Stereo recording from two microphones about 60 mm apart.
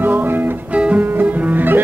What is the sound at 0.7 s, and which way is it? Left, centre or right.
Music, right.